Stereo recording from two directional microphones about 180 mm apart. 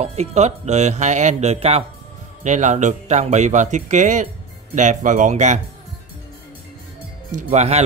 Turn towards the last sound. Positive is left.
turn(degrees=-40)  # may be behind; listen again after turning